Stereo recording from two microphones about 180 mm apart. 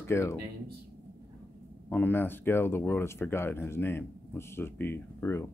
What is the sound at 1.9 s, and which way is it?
Speech, 10° left (ahead or behind).